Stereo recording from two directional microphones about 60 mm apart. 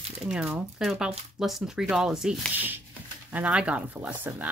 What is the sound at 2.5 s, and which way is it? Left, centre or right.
Speech, right.